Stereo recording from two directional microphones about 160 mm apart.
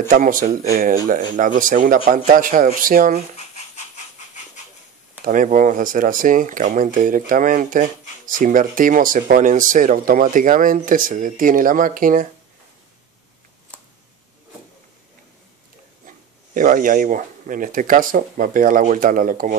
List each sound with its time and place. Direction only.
0.1 s speech: 55° right (ahead or behind)
3.5 s a sound: 45° left (ahead or behind)
5.2 s speech: 55° right (ahead or behind)
16.1 s speech: 55° right (ahead or behind)